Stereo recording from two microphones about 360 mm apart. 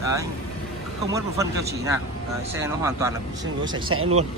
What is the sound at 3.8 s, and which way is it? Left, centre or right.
Speech, right.